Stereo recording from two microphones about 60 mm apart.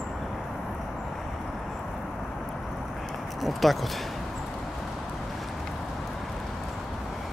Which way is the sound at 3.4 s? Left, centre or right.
Centre.